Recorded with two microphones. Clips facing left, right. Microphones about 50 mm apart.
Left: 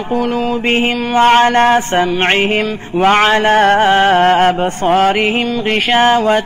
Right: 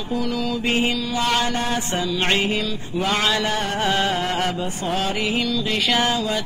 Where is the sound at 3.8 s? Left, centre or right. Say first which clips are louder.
Left 11 dB; left.